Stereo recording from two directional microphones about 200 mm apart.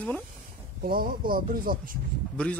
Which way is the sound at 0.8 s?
45° right (ahead or behind).